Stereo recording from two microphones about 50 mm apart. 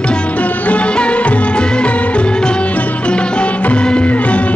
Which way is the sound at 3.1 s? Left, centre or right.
Left.